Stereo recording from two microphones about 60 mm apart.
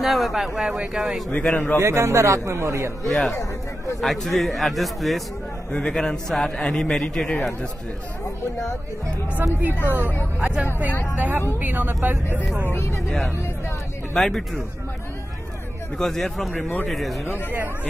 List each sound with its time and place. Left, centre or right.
0.0 s speech: centre
1.5 s speech: left
1.8 s a man's voice: right
3.1 s speech: centre
5.7 s a man's voice: centre
9.4 s a woman's voice: right
14.1 s speech: centre
16.0 s speech: centre
17.3 s a woman's voice: right